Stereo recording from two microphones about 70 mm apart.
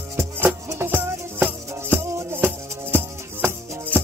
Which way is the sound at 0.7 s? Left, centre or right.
Right.